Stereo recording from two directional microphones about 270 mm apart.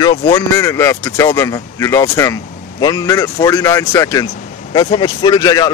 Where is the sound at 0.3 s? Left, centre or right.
Centre.